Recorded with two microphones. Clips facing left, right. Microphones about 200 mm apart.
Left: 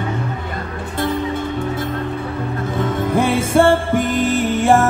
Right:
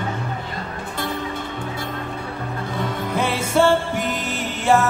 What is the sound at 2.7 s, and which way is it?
Music, 50° left (ahead or behind).